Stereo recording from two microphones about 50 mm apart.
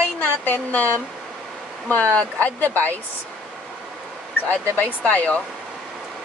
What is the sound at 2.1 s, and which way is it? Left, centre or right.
Speech, left.